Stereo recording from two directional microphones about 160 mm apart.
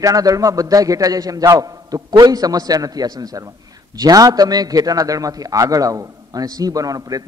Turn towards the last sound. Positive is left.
turn(degrees=-20)  # may be behind; listen again after turning